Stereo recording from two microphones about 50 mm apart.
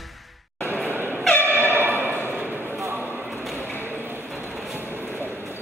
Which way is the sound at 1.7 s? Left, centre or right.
Right.